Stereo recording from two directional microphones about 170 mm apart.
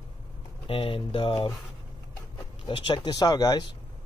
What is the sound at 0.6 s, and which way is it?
Speech, 30° left (ahead or behind).